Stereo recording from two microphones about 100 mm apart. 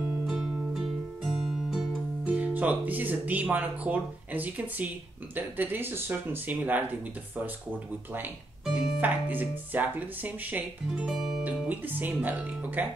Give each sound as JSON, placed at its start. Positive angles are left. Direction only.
{"t": 0.3, "sound": "music", "side_deg": -5}
{"t": 2.2, "sound": "speech", "side_deg": -15}
{"t": 8.6, "sound": "speech", "side_deg": -15}
{"t": 11.1, "sound": "music", "side_deg": -5}
{"t": 11.5, "sound": "speech", "side_deg": -15}